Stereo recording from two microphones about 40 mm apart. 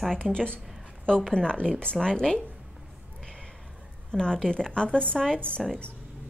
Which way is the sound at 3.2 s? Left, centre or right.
Centre.